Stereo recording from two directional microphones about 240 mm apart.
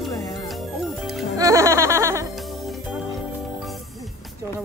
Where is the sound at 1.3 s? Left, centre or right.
Centre.